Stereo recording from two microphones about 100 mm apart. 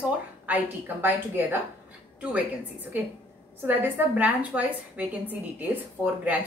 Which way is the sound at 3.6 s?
20° right (ahead or behind).